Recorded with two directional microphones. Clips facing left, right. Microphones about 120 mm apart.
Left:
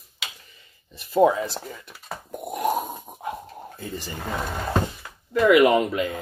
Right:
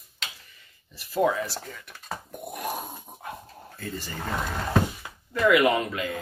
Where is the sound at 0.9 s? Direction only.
20° left (ahead or behind).